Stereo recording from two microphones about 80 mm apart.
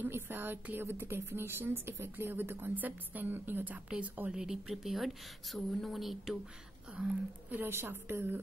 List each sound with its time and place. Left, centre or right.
0.0 s a woman's voice: right; by 6.3 s centre
7.5 s a woman's voice: right